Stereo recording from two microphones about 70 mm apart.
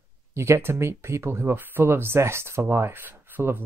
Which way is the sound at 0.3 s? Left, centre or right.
Right.